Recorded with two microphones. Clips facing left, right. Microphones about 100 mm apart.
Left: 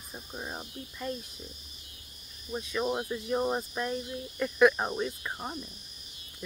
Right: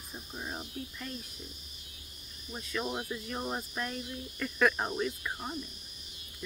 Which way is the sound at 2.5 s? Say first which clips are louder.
Left 5 dB; 15° left (ahead or behind).